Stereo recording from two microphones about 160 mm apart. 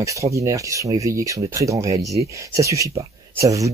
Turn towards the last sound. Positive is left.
turn(degrees=-20)  # may be behind; listen again after turning